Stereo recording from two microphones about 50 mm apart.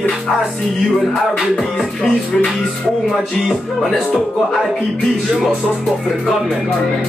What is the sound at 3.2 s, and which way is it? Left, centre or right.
Speech, centre.